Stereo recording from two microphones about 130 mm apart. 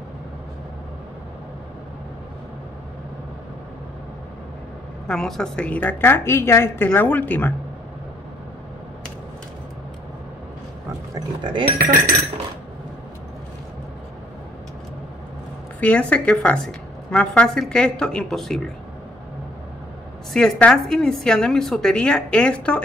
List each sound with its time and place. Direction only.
5.0 s a woman's voice: 5° left (ahead or behind)
11.1 s speech: 35° right (ahead or behind)
15.8 s a woman's voice: 10° left (ahead or behind)
20.3 s a woman's voice: 5° left (ahead or behind)